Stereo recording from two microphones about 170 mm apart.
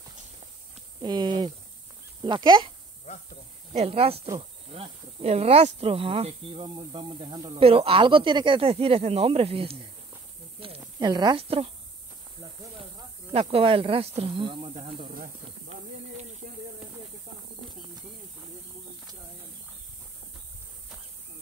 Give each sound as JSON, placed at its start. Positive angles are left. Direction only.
{"t": 1.0, "sound": "speech", "side_deg": -25}
{"t": 3.7, "sound": "speech", "side_deg": -35}
{"t": 13.3, "sound": "speech", "side_deg": -35}
{"t": 16.4, "sound": "a sound", "side_deg": -60}